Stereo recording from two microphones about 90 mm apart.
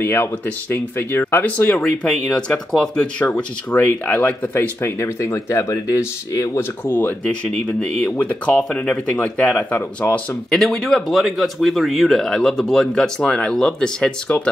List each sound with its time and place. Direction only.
0.0 s speech: 25° left (ahead or behind)
6.9 s speech: 25° left (ahead or behind)
10.5 s speech: 5° left (ahead or behind)